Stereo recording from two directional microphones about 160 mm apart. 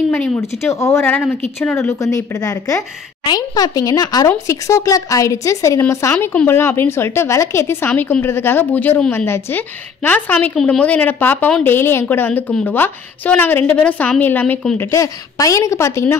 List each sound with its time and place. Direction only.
0.4 s a woman's voice: 15° left (ahead or behind)
14.9 s speech: 20° left (ahead or behind)